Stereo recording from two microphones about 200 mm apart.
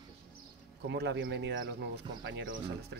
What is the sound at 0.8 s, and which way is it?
Speech, 60° right (ahead or behind).